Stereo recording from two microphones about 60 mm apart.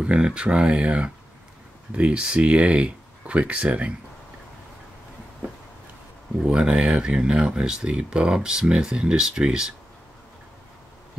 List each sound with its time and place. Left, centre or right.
0.0 s speech: centre
6.4 s speech: centre